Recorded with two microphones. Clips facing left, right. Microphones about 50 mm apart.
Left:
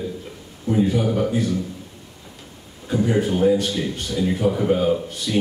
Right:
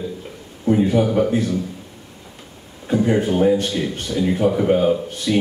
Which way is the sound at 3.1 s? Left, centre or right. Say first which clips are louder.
Right 1 dB; centre.